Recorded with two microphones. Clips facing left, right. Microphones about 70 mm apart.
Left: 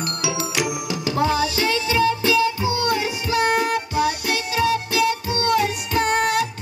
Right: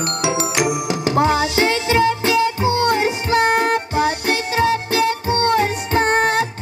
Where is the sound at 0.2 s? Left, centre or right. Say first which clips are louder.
Right 5 dB; right.